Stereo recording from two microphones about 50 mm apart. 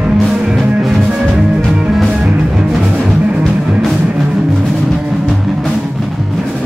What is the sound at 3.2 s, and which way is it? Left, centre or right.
Music, right.